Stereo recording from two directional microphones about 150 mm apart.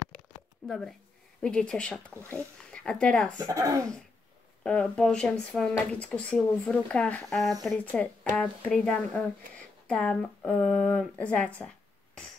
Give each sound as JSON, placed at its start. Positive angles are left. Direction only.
{"t": 0.7, "sound": "speech", "side_deg": 0}
{"t": 3.3, "sound": "speech", "side_deg": -25}
{"t": 4.6, "sound": "speech", "side_deg": 5}